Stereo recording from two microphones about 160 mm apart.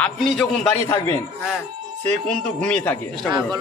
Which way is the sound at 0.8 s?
20° left (ahead or behind).